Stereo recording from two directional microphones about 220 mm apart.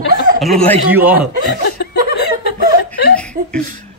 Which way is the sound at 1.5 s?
50° left (ahead or behind).